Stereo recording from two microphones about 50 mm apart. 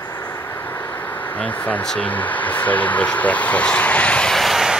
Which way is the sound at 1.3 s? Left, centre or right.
Left.